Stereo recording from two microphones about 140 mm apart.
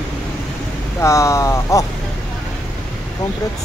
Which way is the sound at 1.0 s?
20° left (ahead or behind).